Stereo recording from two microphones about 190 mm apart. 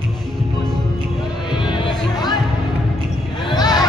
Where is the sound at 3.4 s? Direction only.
20° left (ahead or behind).